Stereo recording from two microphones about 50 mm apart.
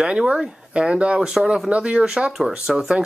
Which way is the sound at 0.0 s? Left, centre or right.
Centre.